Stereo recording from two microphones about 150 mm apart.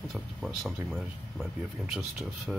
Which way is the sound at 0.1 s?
Centre (ahead or behind).